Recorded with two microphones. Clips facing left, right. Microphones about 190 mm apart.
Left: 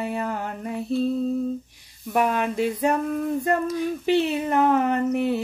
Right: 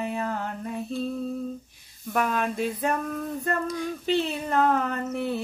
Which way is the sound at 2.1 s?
10° left (ahead or behind).